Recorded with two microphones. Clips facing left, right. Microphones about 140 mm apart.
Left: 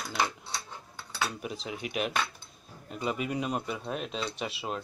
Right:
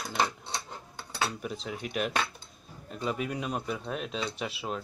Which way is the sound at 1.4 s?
5° left (ahead or behind).